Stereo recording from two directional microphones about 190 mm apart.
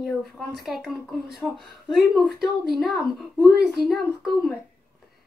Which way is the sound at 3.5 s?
55° right (ahead or behind).